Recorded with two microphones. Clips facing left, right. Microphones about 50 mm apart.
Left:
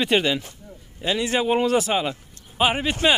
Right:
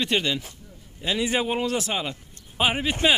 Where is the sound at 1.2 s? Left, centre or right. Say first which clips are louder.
Left 1 dB; centre.